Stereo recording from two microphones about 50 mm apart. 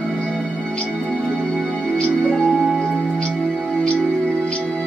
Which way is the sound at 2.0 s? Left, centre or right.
Centre.